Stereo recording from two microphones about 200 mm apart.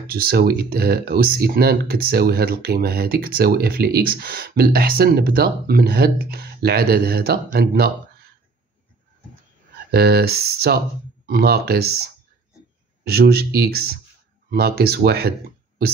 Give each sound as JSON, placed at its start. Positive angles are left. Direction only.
{"t": 0.1, "sound": "speech", "side_deg": -50}
{"t": 9.8, "sound": "speech", "side_deg": -50}